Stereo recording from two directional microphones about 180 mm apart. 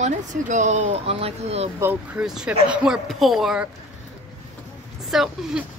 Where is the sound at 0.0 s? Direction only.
45° right (ahead or behind).